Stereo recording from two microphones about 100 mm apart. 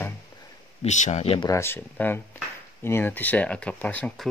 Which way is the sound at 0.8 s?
90° left.